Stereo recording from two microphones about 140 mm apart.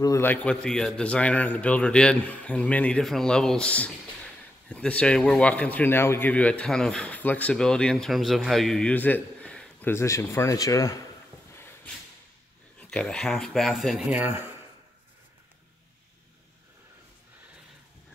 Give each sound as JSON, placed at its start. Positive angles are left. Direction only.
{"t": 0.0, "sound": "a man's voice", "side_deg": 20}
{"t": 11.5, "sound": "a sound", "side_deg": 15}
{"t": 12.9, "sound": "speech", "side_deg": 5}